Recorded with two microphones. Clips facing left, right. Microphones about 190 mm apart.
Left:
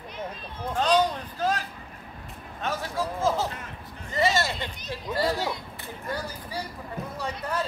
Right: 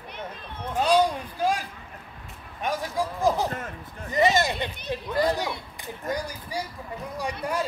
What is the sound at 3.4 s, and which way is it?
Speech, 50° right (ahead or behind).